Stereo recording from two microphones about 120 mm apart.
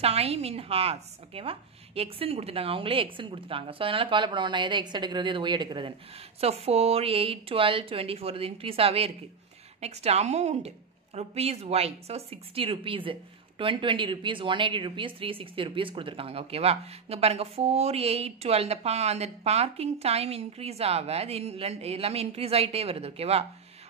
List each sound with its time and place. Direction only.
0.0 s speech: 60° right (ahead or behind)
6.4 s speech: 60° right (ahead or behind)
9.8 s a woman's voice: 65° right (ahead or behind)